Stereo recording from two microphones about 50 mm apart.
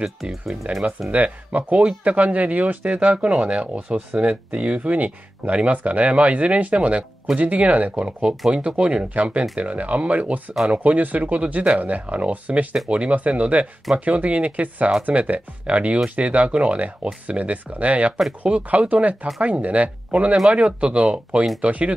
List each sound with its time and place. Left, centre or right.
0.2 s speech: centre
1.1 s speech: right